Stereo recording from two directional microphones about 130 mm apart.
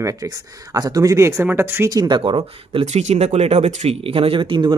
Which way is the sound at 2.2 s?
40° right (ahead or behind).